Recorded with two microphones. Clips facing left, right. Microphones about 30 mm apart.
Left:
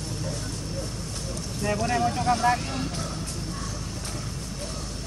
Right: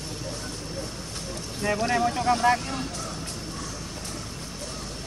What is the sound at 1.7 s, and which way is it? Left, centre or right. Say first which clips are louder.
Boat: right 1 dB; right.